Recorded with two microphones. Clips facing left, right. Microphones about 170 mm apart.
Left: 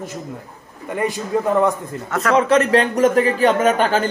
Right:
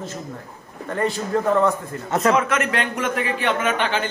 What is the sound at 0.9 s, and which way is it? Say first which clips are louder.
Speech: left 1 dB; 15° left (ahead or behind).